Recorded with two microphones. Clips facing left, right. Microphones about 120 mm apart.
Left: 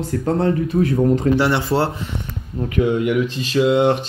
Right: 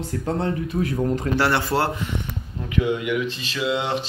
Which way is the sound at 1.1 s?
20° left (ahead or behind).